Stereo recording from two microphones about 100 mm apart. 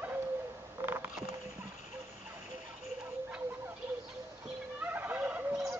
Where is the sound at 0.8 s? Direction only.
25° right (ahead or behind).